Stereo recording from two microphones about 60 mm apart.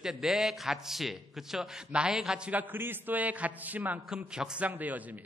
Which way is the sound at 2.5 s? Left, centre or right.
Right.